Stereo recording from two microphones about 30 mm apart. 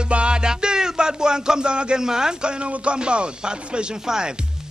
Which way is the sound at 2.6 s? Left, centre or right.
Right.